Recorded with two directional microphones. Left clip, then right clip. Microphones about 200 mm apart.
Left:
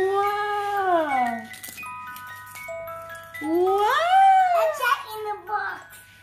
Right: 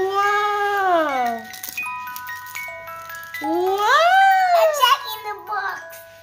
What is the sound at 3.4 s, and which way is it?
Music, 25° right (ahead or behind).